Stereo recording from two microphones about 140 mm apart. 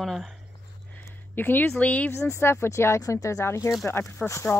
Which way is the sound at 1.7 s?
10° left (ahead or behind).